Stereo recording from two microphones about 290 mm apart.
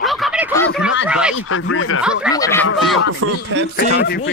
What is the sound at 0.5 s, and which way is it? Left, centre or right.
Snicker, centre.